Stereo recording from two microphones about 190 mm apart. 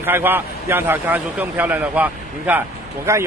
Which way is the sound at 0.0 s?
10° right (ahead or behind).